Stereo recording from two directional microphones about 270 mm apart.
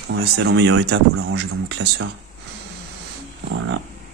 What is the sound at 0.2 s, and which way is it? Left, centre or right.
Speech, right.